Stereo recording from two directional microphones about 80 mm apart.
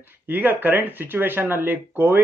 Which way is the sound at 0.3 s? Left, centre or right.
Right.